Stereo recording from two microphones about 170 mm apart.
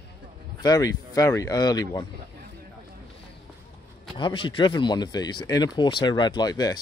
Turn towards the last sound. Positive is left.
turn(degrees=20)  # may be behind; listen again after turning